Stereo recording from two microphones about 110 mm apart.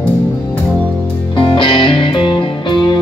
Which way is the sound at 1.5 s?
45° left (ahead or behind).